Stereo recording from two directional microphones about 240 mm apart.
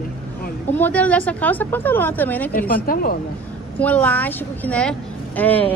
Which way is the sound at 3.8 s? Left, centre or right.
Centre.